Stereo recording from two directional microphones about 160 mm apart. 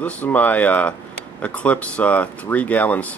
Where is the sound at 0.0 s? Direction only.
10° left (ahead or behind).